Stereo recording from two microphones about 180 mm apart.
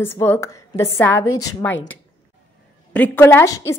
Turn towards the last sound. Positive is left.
turn(degrees=15)  # may be behind; listen again after turning